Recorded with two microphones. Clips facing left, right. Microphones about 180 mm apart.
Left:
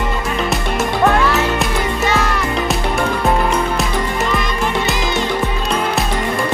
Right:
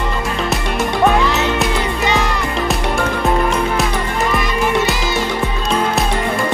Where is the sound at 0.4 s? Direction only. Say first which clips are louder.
Left 1 dB; centre (ahead or behind).